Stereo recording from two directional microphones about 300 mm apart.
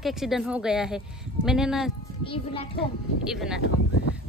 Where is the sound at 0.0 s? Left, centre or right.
Centre.